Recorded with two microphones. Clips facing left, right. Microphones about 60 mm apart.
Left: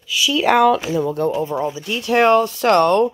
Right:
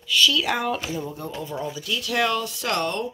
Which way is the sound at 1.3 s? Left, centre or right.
Left.